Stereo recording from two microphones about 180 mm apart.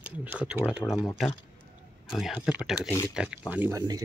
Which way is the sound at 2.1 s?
Centre (ahead or behind).